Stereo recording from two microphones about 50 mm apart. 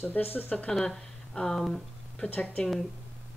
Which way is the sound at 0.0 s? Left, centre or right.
Left.